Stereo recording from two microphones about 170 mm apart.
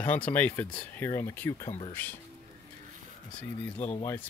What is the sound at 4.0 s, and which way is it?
Speech, 15° left (ahead or behind).